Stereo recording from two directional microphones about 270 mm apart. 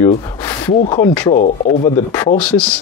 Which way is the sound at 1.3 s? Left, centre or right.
Left.